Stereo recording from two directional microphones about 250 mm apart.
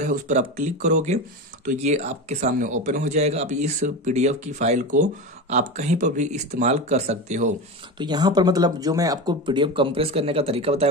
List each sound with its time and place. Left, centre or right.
0.0 s speech: right
8.0 s speech: centre